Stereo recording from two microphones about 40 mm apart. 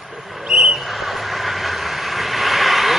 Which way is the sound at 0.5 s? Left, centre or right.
Right.